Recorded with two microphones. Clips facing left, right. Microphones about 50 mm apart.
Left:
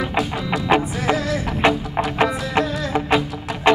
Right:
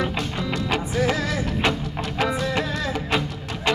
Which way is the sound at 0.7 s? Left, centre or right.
Left.